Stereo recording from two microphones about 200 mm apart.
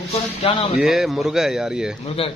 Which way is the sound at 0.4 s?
25° left (ahead or behind).